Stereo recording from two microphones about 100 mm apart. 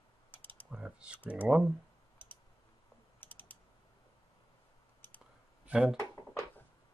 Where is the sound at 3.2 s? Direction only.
20° left (ahead or behind).